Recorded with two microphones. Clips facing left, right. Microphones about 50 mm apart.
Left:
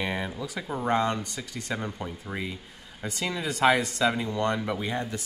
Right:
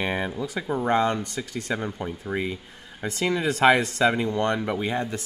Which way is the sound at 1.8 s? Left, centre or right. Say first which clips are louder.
Right 4 dB; centre.